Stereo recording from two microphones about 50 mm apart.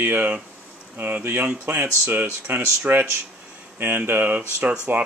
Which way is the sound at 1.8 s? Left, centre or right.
Right.